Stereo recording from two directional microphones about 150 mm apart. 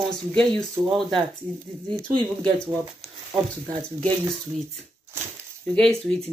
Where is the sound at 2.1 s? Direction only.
30° right (ahead or behind).